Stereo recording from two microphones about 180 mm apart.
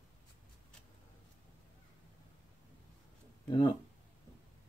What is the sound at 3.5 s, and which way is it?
Speech, 25° left (ahead or behind).